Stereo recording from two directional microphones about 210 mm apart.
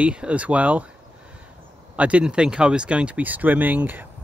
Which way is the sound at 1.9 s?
5° right (ahead or behind).